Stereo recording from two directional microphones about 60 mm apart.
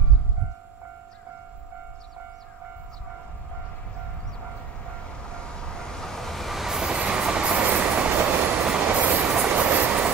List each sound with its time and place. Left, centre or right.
5.3 s train: centre; by 10.1 s right